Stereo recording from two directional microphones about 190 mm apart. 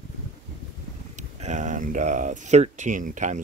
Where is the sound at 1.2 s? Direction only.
40° right (ahead or behind).